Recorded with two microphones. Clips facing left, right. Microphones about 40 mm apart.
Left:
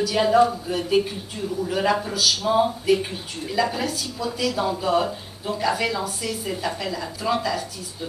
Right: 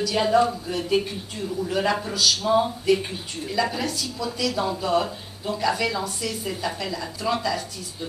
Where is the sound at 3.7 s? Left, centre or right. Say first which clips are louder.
Left 1 dB; left.